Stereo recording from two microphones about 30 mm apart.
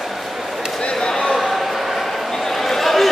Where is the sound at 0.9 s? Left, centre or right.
Left.